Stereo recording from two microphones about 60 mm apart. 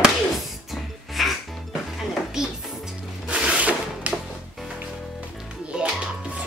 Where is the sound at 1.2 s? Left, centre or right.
Centre.